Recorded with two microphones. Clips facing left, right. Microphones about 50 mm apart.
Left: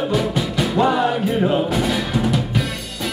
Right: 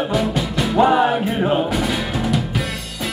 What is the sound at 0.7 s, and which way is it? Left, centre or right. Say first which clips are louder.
Music: right 4 dB; centre.